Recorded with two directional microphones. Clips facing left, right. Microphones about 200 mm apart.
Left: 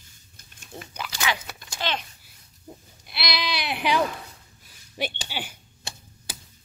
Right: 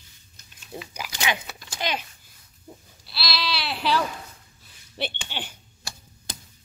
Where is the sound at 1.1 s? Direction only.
20° right (ahead or behind).